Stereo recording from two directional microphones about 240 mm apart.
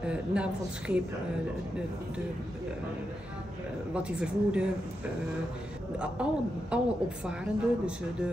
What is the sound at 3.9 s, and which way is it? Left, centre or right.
Speech, centre.